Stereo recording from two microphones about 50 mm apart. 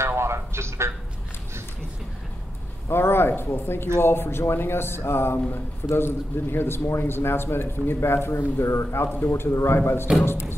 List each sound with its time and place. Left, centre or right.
0.0 s a sound: right
2.9 s a man's voice: left
9.0 s a man's voice: left
9.4 s a man's voice: left
9.8 s a man's voice: left